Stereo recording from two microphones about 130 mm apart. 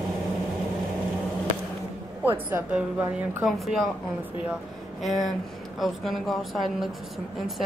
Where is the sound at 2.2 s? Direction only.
15° right (ahead or behind).